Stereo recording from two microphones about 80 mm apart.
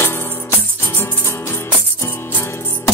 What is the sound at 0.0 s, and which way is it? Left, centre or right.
Music, left.